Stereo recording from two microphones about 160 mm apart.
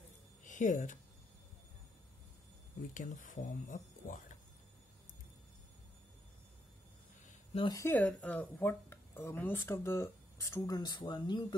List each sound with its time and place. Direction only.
0.4 s a sound: 50° left (ahead or behind)
2.9 s speech: 55° left (ahead or behind)
7.5 s speech: 25° left (ahead or behind)
7.8 s speech: 10° left (ahead or behind); by 11.4 s 30° left (ahead or behind)